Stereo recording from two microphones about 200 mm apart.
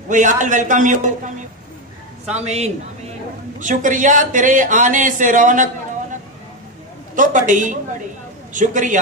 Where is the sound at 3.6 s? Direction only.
40° right (ahead or behind).